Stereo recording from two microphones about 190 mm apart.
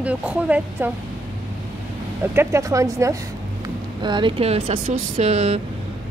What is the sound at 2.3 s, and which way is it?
Speech, 15° right (ahead or behind).